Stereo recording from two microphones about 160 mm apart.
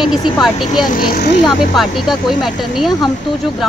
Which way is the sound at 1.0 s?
65° left (ahead or behind).